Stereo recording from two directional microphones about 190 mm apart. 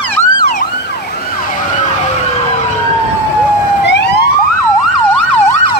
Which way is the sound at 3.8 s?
65° left (ahead or behind).